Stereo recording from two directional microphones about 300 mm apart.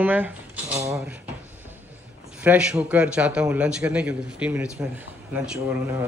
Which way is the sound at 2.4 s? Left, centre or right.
Centre.